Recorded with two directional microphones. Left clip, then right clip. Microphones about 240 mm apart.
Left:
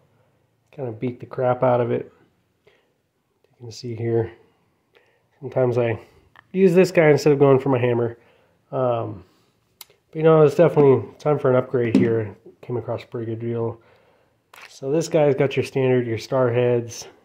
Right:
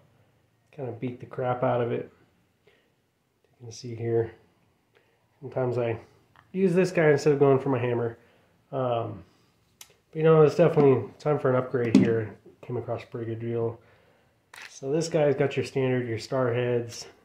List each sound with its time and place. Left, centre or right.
0.7 s speech: left
3.6 s speech: left